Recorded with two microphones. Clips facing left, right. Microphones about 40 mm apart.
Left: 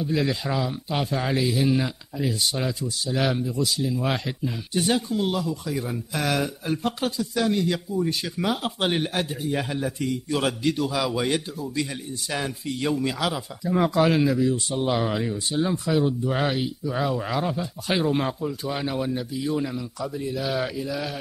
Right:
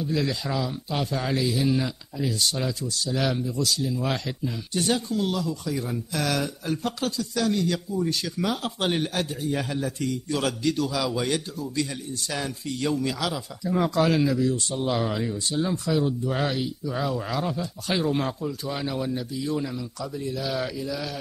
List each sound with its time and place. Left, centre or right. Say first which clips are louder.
0.0 s a man's voice: left 2 dB; centre